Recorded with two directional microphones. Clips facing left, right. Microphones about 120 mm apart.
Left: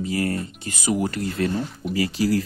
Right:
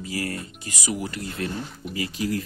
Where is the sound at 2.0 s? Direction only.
90° left.